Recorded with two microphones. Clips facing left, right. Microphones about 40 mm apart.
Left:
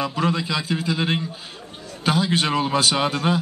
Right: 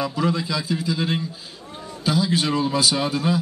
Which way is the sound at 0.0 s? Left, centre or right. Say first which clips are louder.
Even; left.